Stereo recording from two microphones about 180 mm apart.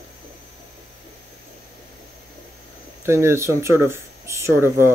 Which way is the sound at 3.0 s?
15° right (ahead or behind).